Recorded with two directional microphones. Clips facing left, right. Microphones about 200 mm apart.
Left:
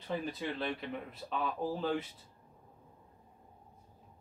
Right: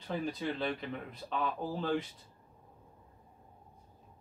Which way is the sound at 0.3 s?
Centre (ahead or behind).